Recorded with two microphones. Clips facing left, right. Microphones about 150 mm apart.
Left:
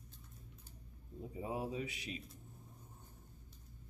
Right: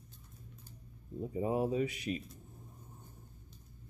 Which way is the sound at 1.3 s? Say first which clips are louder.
Right 9 dB; 50° right (ahead or behind).